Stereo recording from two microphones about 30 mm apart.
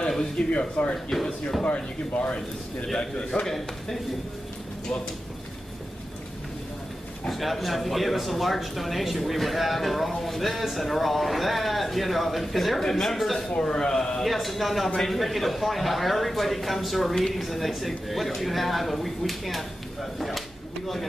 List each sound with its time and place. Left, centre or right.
0.4 s speech: left
0.8 s speech: left
3.4 s a man's voice: centre
7.2 s speech: centre
13.6 s speech: left
14.2 s speech: centre
18.9 s a sound: centre